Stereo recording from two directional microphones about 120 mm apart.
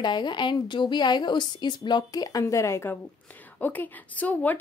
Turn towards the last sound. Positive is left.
turn(degrees=15)  # may be behind; listen again after turning